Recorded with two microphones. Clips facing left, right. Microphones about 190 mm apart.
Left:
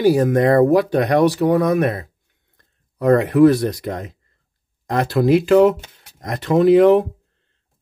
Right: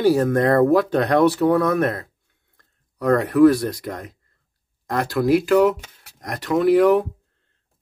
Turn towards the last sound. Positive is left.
turn(degrees=20)  # may be behind; listen again after turning